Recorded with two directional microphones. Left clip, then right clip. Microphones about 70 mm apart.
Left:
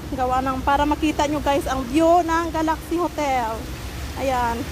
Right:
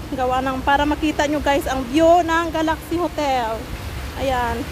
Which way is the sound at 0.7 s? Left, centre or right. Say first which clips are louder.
Right 1 dB; centre.